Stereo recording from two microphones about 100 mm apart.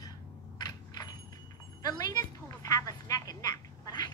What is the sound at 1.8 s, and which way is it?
A man's voice, 40° left (ahead or behind).